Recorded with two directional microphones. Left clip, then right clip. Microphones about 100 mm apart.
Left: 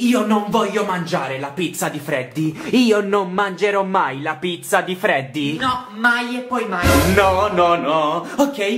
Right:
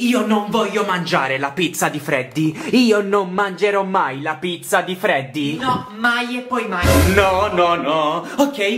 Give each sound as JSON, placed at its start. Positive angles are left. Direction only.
{"t": 0.0, "sound": "speech", "side_deg": 0}
{"t": 1.1, "sound": "speech", "side_deg": -45}
{"t": 2.7, "sound": "music", "side_deg": -10}
{"t": 3.0, "sound": "speech", "side_deg": 0}